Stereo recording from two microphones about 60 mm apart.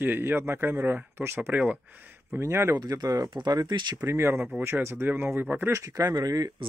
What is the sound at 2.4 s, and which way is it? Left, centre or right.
Speech, right.